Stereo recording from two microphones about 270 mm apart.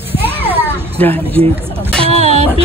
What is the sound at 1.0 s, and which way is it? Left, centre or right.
Speech, centre.